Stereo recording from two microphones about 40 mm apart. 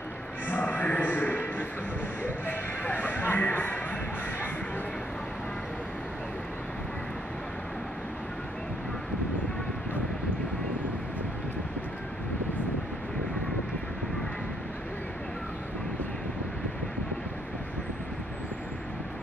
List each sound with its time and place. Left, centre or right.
0.5 s music: left
2.2 s speech: left